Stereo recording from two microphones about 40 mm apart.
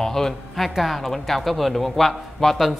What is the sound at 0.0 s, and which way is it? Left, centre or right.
A man's voice, centre.